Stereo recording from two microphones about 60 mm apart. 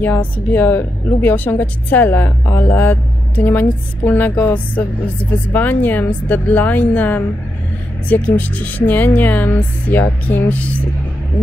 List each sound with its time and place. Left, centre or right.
0.0 s speech: left